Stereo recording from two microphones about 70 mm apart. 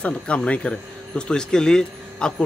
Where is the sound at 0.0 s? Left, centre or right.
Centre.